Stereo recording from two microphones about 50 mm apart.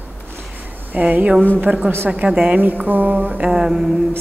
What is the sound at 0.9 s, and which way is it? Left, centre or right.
Speech, right.